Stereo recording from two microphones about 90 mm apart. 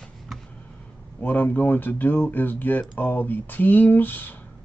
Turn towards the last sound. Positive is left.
turn(degrees=20)  # may be behind; listen again after turning